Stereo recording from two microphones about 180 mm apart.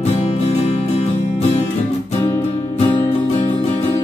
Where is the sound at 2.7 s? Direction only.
30° left (ahead or behind).